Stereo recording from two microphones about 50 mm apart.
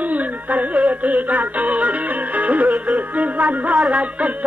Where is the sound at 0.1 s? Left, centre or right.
Right.